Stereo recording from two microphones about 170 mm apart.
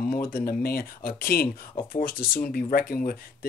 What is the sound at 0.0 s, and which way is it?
Speech, 60° left (ahead or behind).